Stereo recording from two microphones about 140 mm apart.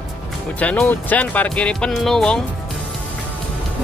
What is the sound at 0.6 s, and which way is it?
Speech, 10° left (ahead or behind).